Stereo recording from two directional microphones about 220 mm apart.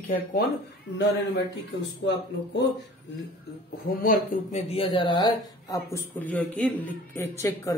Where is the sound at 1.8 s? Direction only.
50° left (ahead or behind).